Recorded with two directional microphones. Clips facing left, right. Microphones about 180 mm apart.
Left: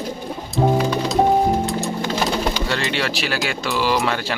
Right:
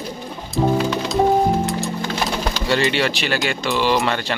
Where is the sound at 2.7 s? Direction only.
Centre (ahead or behind).